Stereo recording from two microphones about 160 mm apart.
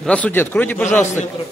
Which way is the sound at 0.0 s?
10° left (ahead or behind).